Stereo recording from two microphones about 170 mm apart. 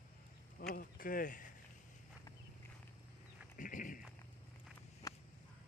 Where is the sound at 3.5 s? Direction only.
50° left (ahead or behind).